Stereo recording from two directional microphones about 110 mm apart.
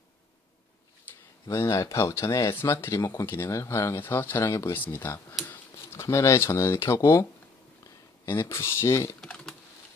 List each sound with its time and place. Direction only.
1.1 s a sound: 15° left (ahead or behind)
1.5 s speech: 30° left (ahead or behind)
8.3 s speech: 25° left (ahead or behind)
9.2 s typing: 5° left (ahead or behind)